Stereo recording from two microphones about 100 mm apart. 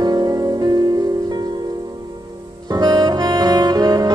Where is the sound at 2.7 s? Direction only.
45° right (ahead or behind).